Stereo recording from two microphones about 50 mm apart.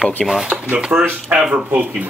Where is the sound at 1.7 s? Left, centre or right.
Right.